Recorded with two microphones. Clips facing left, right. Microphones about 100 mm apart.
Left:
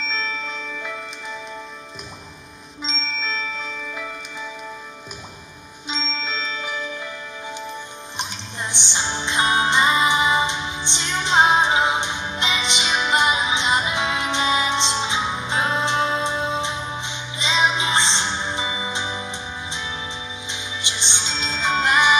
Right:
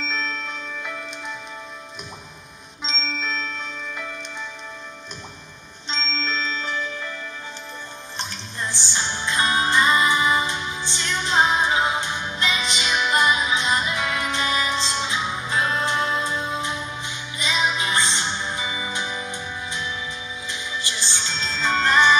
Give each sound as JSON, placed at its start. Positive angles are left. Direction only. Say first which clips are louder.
{"t": 2.8, "sound": "music", "louder": "even", "side_deg": 0}
{"t": 5.9, "sound": "music", "louder": "even", "side_deg": 10}
{"t": 8.2, "sound": "music", "louder": "left 1 dB", "side_deg": 20}